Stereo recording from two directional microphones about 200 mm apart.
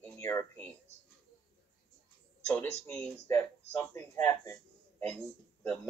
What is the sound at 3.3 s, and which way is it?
Speech, 15° left (ahead or behind).